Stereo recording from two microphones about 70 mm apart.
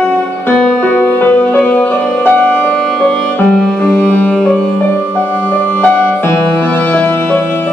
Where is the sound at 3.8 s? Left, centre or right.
Left.